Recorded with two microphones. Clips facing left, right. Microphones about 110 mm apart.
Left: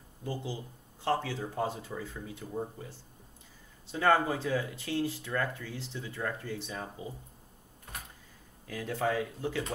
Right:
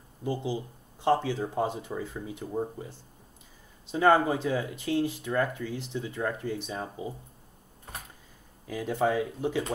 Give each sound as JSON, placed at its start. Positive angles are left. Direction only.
{"t": 0.2, "sound": "speech", "side_deg": -20}
{"t": 8.6, "sound": "speech", "side_deg": -20}